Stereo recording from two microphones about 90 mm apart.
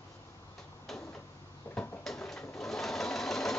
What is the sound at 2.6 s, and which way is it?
Sewing machine, 5° left (ahead or behind).